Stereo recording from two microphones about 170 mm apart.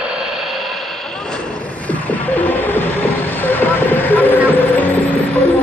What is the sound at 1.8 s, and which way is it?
Music, 10° left (ahead or behind).